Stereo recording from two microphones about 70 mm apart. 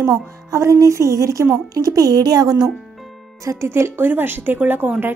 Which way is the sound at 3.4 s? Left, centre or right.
Right.